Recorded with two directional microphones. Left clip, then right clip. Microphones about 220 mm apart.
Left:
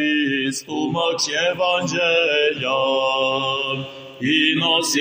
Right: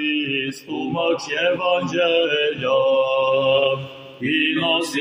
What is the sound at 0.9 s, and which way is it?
Mantra, 45° left (ahead or behind).